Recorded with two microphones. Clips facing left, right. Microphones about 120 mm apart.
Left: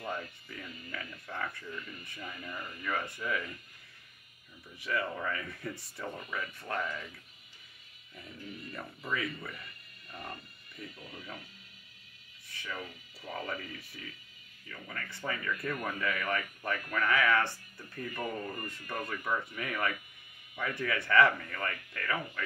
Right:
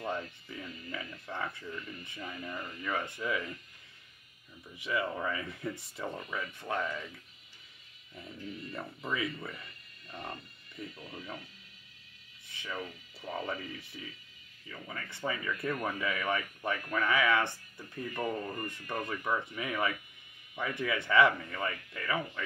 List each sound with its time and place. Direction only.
0.0 s speech: 25° right (ahead or behind)
4.7 s speech: 20° right (ahead or behind)
8.2 s speech: 25° right (ahead or behind)
11.0 s speech: 25° right (ahead or behind)
12.4 s speech: 20° right (ahead or behind)